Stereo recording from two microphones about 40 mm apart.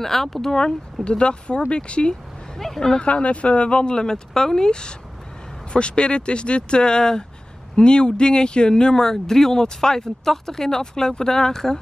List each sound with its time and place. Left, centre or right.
0.0 s speech: centre
1.0 s speech: left
2.5 s speech: centre
3.0 s speech: left; by 11.8 s centre